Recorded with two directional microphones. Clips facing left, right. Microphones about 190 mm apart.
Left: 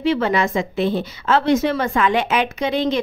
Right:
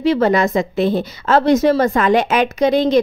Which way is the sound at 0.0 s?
40° right (ahead or behind).